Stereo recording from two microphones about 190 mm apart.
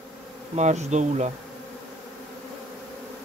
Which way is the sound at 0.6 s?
35° right (ahead or behind).